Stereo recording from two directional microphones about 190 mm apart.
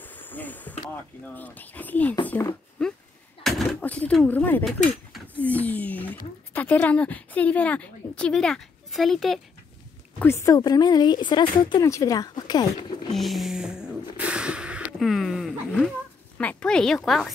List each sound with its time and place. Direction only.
0.0 s basketball bounce: 10° left (ahead or behind)
1.2 s speech: 10° left (ahead or behind)
10.1 s speech: 15° left (ahead or behind)
13.1 s a sound: centre (ahead or behind)
16.3 s a woman's voice: 5° left (ahead or behind)